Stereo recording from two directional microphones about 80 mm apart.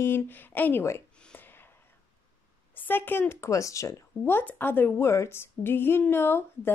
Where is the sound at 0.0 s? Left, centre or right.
Left.